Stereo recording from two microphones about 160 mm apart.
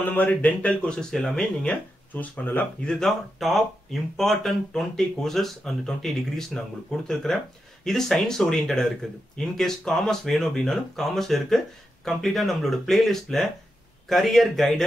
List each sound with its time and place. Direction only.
0.0 s speech: 10° left (ahead or behind)